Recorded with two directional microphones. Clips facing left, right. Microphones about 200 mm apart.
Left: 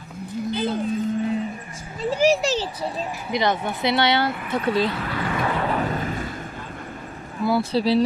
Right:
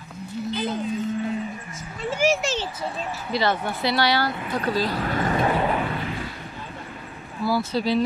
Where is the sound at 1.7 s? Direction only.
35° left (ahead or behind).